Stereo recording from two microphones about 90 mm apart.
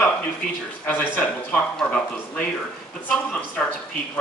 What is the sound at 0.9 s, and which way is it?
A man's voice, 20° left (ahead or behind).